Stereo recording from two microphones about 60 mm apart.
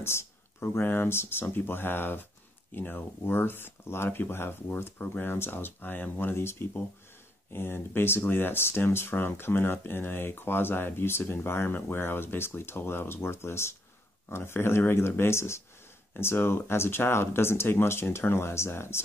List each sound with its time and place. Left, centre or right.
0.0 s speech: left